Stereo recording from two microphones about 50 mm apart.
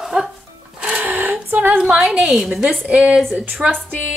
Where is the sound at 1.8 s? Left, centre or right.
Centre.